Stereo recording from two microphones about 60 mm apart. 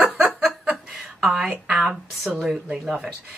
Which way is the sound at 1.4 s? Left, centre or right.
Right.